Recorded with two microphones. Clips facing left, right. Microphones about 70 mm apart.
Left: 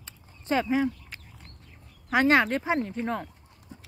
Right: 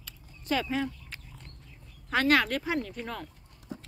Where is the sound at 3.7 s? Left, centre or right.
Right.